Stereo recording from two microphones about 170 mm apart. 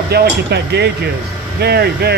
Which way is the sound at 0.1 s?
75° right (ahead or behind).